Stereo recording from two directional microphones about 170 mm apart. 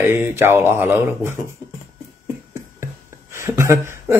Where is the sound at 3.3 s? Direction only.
15° right (ahead or behind).